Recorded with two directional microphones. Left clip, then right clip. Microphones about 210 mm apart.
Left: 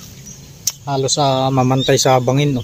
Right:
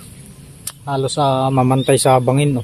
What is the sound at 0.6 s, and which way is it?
Speech, 5° right (ahead or behind).